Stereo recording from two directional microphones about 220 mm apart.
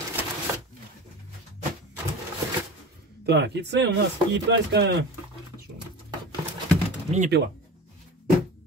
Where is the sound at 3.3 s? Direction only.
50° right (ahead or behind).